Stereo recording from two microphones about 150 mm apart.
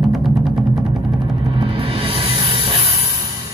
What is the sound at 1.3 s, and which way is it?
Music, 30° right (ahead or behind).